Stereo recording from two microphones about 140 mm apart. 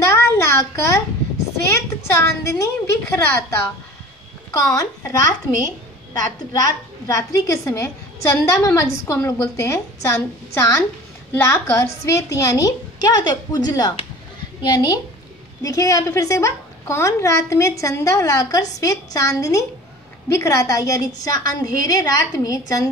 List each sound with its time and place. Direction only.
0.0 s a sound: 20° left (ahead or behind)
1.7 s a woman's voice: 20° left (ahead or behind)
6.1 s a woman's voice: 25° left (ahead or behind)